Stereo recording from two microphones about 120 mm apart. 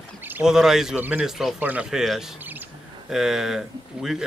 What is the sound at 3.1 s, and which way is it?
Speech, 5° right (ahead or behind).